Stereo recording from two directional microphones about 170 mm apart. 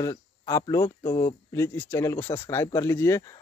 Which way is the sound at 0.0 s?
20° left (ahead or behind).